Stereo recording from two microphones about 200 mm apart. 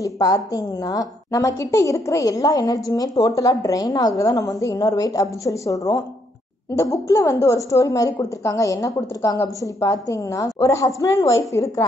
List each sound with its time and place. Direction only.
0.0 s a woman's voice: 20° left (ahead or behind)